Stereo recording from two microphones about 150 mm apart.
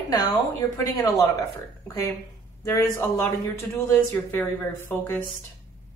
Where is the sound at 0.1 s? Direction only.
25° left (ahead or behind).